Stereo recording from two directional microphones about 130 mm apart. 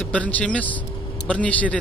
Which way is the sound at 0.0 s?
10° left (ahead or behind).